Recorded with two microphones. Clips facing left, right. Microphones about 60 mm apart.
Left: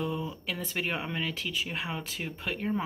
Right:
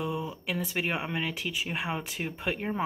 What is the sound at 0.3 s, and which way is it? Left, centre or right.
Speech, centre.